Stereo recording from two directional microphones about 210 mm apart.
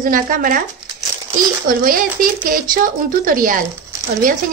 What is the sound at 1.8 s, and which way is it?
Speech, 40° right (ahead or behind).